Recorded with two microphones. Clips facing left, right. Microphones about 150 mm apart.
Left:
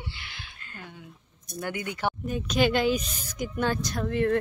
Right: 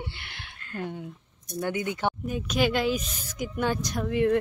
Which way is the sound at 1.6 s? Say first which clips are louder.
Right 2 dB; 20° right (ahead or behind).